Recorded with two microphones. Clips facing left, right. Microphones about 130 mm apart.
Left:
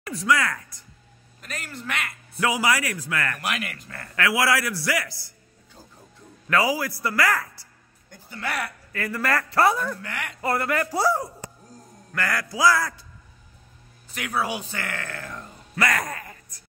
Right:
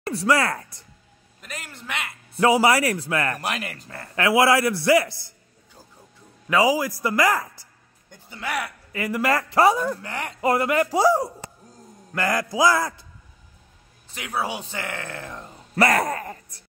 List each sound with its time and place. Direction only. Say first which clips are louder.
0.0 s speech: right 3 dB; 30° right (ahead or behind)
1.4 s a man's voice: left 3 dB; 15° right (ahead or behind)
6.5 s a man's voice: right 3 dB; 15° right (ahead or behind)
10.0 s speech: right 3 dB; 30° right (ahead or behind)
10.4 s a man's voice: right 4 dB; 15° right (ahead or behind)
14.1 s a man's voice: left 1 dB; 25° right (ahead or behind)
15.7 s speech: right 6 dB; 35° right (ahead or behind)